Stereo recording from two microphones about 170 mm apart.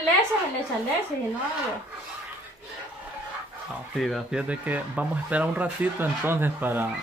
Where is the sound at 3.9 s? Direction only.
Centre (ahead or behind).